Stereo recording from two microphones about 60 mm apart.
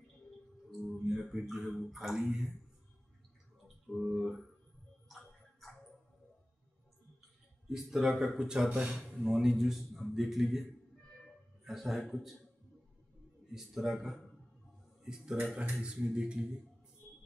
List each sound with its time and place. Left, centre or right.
0.7 s a man's voice: centre
4.1 s a man's voice: centre
5.0 s music: centre
7.7 s a man's voice: centre
13.5 s a man's voice: centre
15.0 s speech: centre